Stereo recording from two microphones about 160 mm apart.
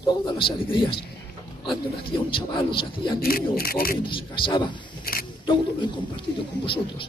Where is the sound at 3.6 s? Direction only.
65° left (ahead or behind).